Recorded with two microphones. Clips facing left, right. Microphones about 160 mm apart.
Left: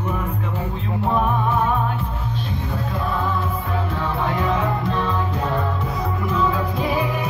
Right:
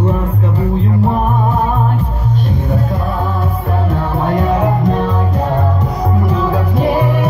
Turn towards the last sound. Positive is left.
turn(degrees=-60)  # may be behind; listen again after turning